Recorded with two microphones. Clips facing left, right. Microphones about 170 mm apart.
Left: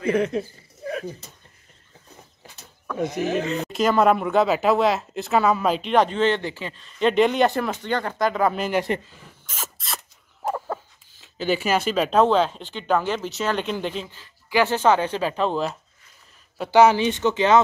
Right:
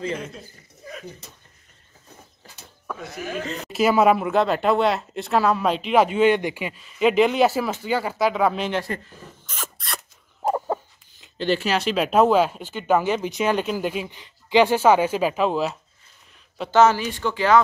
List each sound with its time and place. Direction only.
0.0 s speech: 65° left (ahead or behind)
3.0 s speech: 20° left (ahead or behind)
3.7 s speech: 5° right (ahead or behind)
10.4 s a sound: 25° right (ahead or behind)
11.1 s speech: 5° left (ahead or behind)
16.7 s speech: 15° left (ahead or behind)